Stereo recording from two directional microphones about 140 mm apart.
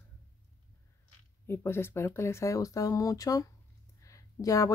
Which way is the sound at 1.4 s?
15° left (ahead or behind).